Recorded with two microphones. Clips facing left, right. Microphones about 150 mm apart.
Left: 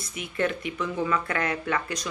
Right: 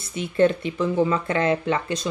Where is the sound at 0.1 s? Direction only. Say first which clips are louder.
Right 9 dB; 30° right (ahead or behind).